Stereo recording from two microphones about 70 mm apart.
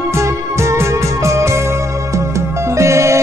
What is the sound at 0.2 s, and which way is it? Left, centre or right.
Music, right.